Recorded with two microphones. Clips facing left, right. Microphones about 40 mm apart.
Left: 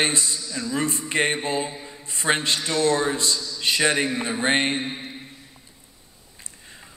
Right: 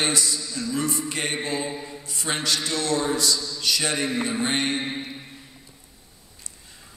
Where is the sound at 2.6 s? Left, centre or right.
Left.